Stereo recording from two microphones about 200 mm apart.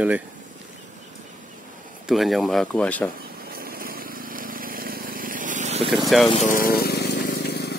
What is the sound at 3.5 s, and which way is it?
Vehicle, 45° right (ahead or behind).